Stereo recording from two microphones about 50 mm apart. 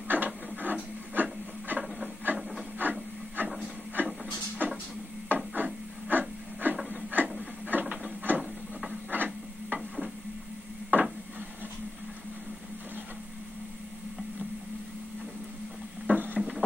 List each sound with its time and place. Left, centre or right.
0.1 s printer: right
2.3 s rub: right
2.8 s wood: right
4.0 s music: right
4.6 s a sound: right
5.3 s wood: right
6.0 s a sound: right
7.9 s printer: right
9.1 s a sound: right
9.8 s stir: centre
10.9 s a sound: right
16.1 s boat: right